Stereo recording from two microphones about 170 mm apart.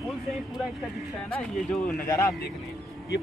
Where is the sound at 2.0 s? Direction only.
15° left (ahead or behind).